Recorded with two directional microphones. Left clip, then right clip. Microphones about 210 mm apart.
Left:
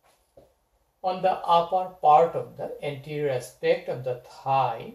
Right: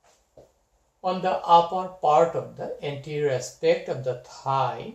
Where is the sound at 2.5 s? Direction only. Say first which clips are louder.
Right 1 dB; 20° right (ahead or behind).